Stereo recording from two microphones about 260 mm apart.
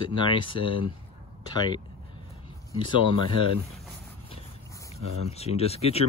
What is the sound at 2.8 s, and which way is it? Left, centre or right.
Speech, centre.